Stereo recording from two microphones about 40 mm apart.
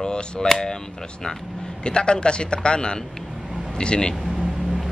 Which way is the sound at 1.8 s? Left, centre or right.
Left.